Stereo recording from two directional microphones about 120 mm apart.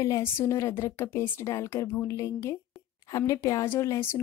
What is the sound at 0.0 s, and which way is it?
Speech, 25° left (ahead or behind).